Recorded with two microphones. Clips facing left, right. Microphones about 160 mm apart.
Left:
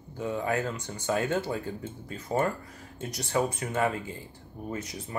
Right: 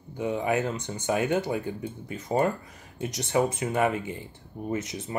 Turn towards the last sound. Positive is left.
turn(degrees=-20)  # may be behind; listen again after turning